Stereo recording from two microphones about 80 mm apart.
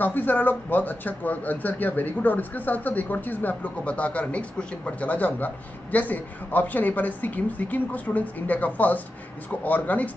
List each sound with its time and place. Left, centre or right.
0.0 s speech: left